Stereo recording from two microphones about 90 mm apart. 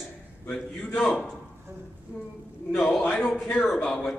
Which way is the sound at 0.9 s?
15° left (ahead or behind).